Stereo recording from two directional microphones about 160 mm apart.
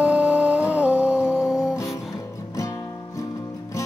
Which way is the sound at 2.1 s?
20° left (ahead or behind).